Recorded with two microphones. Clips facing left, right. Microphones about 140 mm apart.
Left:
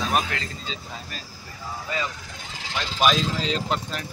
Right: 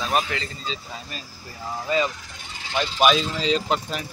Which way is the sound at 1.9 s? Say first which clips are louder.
Right 7 dB; 20° right (ahead or behind).